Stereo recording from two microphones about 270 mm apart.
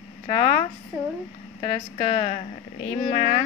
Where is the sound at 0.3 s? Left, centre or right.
Left.